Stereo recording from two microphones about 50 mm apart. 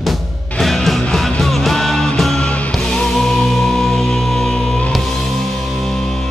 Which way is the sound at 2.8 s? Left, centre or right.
Centre.